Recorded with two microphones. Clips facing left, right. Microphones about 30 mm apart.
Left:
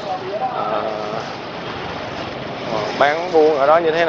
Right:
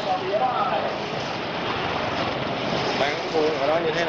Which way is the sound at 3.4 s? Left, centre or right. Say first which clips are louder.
Left 9 dB; centre.